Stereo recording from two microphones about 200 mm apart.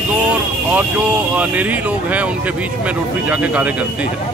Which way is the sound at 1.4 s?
10° right (ahead or behind).